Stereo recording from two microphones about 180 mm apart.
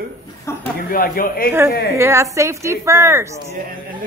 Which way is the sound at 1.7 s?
65° left (ahead or behind).